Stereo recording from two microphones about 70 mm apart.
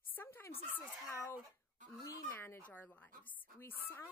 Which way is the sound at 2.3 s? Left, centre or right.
Left.